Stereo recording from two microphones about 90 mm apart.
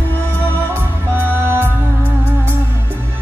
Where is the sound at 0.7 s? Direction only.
25° right (ahead or behind).